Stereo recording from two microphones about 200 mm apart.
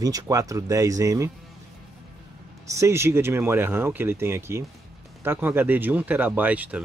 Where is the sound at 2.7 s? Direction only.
15° right (ahead or behind).